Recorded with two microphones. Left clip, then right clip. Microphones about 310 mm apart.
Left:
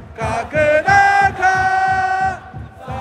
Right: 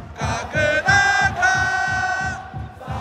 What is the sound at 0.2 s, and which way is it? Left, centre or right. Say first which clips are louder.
Music: left 5 dB; left.